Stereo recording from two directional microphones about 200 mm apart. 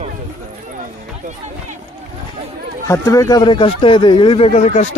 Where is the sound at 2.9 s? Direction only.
15° left (ahead or behind).